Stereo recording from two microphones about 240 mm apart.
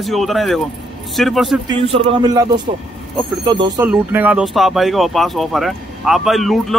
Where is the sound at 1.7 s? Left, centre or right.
Centre.